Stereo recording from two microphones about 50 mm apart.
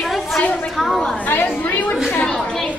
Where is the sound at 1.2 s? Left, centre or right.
Left.